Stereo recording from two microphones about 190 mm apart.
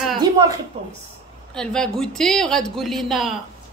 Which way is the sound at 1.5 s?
5° left (ahead or behind).